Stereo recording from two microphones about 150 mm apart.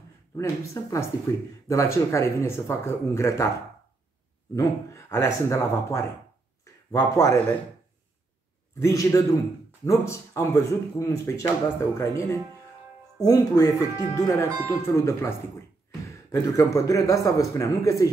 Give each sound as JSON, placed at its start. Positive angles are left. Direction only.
{"t": 0.4, "sound": "speech", "side_deg": 20}
{"t": 4.6, "sound": "speech", "side_deg": 20}
{"t": 6.6, "sound": "a sound", "side_deg": 25}
{"t": 8.7, "sound": "speech", "side_deg": 20}